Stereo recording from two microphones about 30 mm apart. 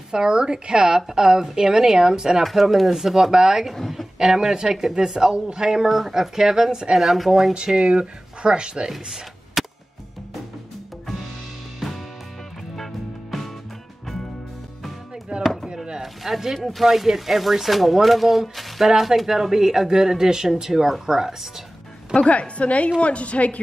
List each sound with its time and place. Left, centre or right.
0.1 s a woman's voice: right
2.4 s speech: centre
2.9 s a woman's voice: centre
5.9 s speech: centre
6.3 s a woman's voice: centre
7.0 s speech: centre
7.5 s a woman's voice: right
9.6 s music: centre
11.8 s music: centre
15.5 s chop: centre
16.0 s zipper: centre
16.5 s speech: centre
22.1 s a woman's voice: left